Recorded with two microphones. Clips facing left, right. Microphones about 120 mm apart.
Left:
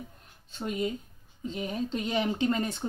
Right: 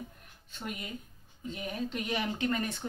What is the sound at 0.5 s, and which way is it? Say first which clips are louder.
Speech: left 9 dB; 25° left (ahead or behind).